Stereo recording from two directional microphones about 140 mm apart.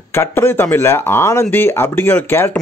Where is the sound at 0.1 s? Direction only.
15° left (ahead or behind).